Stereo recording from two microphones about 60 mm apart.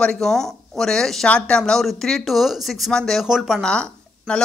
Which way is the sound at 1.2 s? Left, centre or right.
Centre.